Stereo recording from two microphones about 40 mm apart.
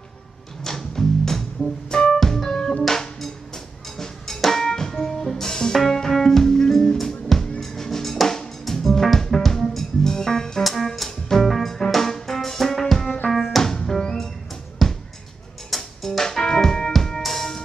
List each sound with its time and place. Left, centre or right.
0.6 s music: centre
13.6 s music: centre
16.1 s music: centre